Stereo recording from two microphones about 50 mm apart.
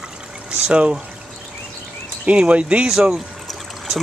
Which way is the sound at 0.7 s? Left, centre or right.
Right.